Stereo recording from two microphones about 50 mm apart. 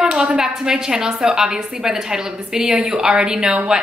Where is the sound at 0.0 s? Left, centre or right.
Centre.